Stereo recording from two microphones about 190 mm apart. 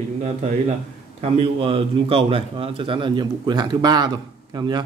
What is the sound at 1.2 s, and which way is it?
A man's voice, 30° right (ahead or behind).